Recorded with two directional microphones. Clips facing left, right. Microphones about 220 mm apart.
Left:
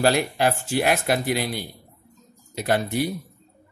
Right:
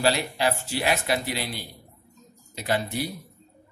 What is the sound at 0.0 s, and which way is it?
Speech, 50° left (ahead or behind).